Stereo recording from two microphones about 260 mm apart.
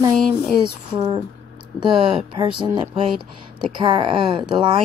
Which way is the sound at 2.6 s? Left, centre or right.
Centre.